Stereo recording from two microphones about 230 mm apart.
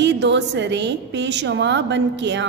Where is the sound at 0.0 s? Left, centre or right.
Right.